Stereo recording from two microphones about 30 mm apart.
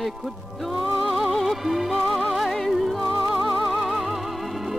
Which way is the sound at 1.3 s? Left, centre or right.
Centre.